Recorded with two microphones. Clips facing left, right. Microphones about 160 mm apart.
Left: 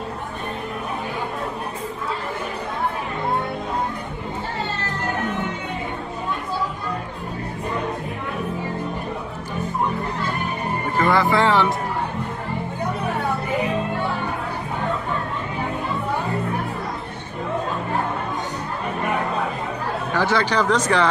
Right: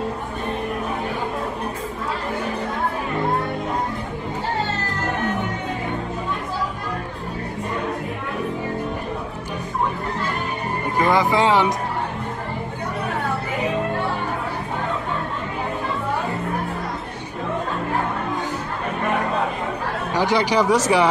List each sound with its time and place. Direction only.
11.0 s speech: 20° right (ahead or behind)
20.1 s speech: 15° right (ahead or behind)